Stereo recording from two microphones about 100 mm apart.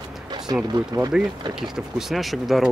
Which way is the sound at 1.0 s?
40° right (ahead or behind).